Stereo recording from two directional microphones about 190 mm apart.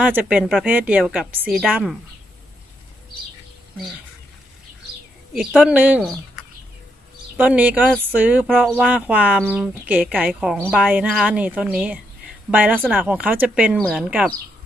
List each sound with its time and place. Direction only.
0.0 s a woman's voice: 10° right (ahead or behind)
5.3 s a woman's voice: 5° right (ahead or behind)
7.3 s a woman's voice: 10° right (ahead or behind)
13.7 s speech: centre (ahead or behind)